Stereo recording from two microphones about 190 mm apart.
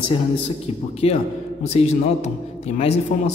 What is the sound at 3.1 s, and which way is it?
Speech, 45° left (ahead or behind).